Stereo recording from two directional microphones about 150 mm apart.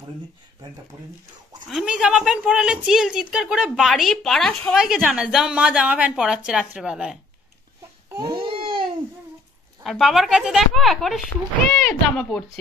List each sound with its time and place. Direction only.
1.7 s a woman's voice: 5° right (ahead or behind)
8.1 s baby cry: 25° right (ahead or behind)
8.4 s babbling: 35° right (ahead or behind)
9.8 s a woman's voice: centre (ahead or behind)